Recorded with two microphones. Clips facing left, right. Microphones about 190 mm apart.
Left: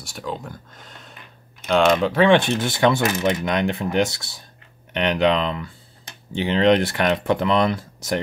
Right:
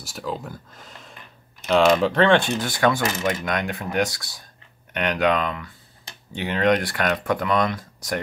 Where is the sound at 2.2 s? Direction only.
15° left (ahead or behind).